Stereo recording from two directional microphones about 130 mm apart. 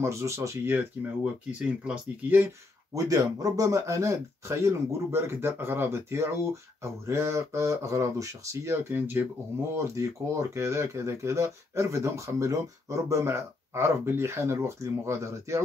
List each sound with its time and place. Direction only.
0.0 s speech: 20° right (ahead or behind)